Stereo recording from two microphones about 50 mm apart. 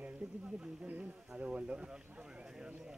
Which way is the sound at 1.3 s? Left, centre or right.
Right.